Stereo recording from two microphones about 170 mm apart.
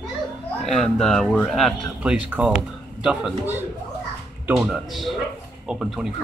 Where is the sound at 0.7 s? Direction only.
5° left (ahead or behind).